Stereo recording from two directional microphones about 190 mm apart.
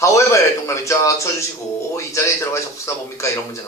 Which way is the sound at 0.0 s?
15° left (ahead or behind).